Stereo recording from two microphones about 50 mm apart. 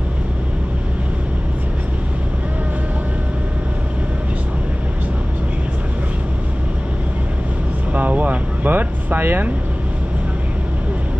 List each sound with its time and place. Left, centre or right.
7.9 s vehicle: right